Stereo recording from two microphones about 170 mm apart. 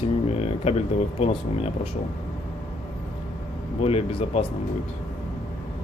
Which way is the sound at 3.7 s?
35° left (ahead or behind).